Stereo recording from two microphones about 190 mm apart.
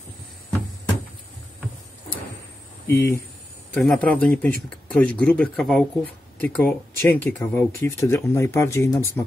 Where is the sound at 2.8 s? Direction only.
15° left (ahead or behind).